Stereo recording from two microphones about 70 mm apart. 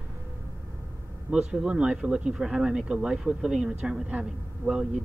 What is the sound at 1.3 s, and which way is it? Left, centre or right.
Speech, centre.